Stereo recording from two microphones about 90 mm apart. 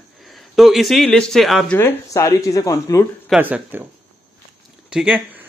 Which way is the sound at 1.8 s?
25° left (ahead or behind).